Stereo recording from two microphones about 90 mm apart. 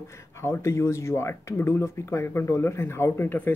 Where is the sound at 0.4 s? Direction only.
35° left (ahead or behind).